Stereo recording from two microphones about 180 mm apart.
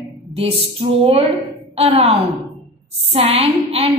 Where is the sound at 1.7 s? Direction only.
35° right (ahead or behind).